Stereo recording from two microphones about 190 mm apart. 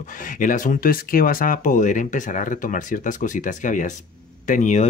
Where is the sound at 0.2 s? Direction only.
45° left (ahead or behind).